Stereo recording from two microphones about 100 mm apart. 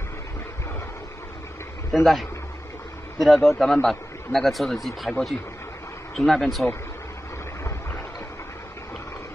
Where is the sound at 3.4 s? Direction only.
Centre (ahead or behind).